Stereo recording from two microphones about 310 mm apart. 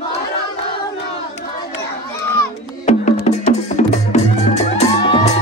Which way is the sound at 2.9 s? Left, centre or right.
Left.